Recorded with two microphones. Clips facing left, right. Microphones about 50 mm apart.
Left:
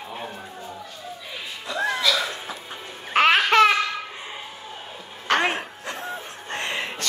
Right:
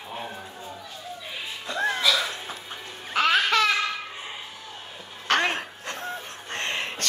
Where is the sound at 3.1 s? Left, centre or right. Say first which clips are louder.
Left 5 dB; left.